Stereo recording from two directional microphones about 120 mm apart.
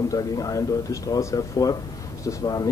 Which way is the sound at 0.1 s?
30° left (ahead or behind).